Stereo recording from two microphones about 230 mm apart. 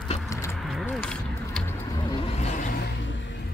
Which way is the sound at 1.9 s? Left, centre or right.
Left.